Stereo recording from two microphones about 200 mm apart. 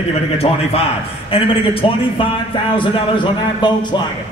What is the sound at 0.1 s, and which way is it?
Speech, 30° left (ahead or behind).